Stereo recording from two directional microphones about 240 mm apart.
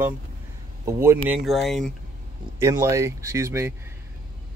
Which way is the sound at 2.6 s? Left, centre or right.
Centre.